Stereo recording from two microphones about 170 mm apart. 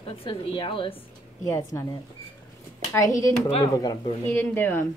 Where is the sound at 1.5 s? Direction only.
15° left (ahead or behind).